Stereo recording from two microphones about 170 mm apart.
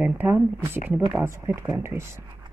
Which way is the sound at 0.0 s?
10° right (ahead or behind).